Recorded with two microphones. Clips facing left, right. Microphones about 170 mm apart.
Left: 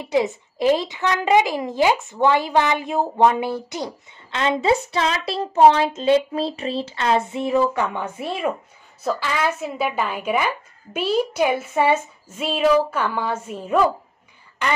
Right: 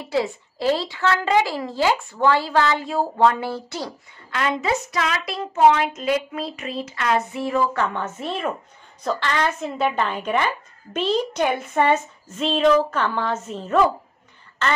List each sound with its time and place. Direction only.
0.0 s a woman's voice: 20° left (ahead or behind)